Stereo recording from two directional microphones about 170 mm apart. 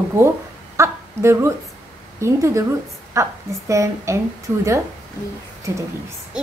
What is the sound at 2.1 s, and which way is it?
A woman's voice, 15° right (ahead or behind).